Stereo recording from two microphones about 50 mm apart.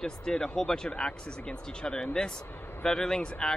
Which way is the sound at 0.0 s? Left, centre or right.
Centre.